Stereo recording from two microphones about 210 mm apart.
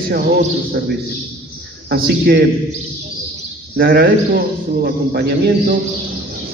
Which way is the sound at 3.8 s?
45° right (ahead or behind).